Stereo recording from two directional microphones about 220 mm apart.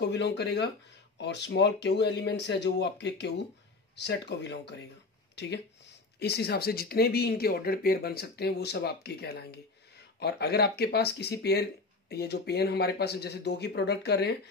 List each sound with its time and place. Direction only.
0.0 s speech: 50° left (ahead or behind)